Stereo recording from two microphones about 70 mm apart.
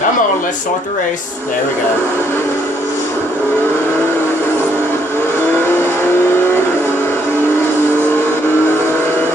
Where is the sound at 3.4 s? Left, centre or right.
Left.